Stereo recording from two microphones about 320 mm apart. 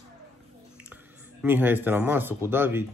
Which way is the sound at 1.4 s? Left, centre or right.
Centre.